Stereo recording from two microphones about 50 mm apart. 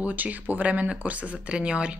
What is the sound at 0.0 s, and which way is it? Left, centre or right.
Speech, right.